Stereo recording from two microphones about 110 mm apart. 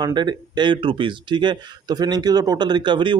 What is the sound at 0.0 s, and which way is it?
Speech, 40° right (ahead or behind).